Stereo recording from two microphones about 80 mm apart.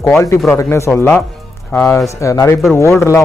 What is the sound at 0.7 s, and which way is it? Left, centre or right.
Speech, left.